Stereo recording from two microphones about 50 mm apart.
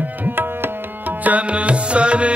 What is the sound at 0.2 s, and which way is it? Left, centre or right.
Tabla, right.